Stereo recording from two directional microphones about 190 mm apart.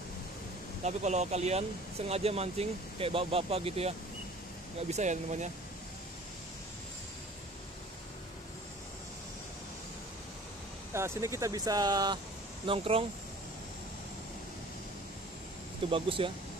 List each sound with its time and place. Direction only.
0.8 s speech: 35° right (ahead or behind)
10.9 s speech: 15° right (ahead or behind); by 13.0 s 30° right (ahead or behind)
15.9 s speech: 30° right (ahead or behind)